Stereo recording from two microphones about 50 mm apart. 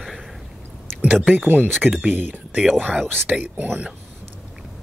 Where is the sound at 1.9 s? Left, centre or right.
Centre.